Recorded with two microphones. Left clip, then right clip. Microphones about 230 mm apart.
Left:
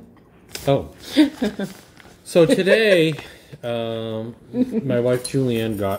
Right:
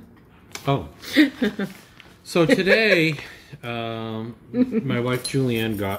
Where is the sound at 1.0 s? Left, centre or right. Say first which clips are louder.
Left 1 dB; right.